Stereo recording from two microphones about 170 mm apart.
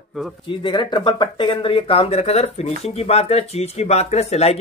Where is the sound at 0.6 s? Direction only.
25° left (ahead or behind).